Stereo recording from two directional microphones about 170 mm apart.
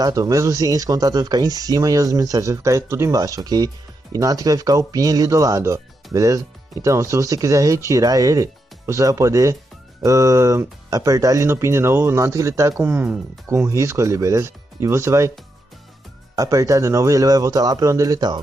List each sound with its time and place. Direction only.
0.0 s speech: 20° right (ahead or behind)
16.3 s speech: 20° right (ahead or behind)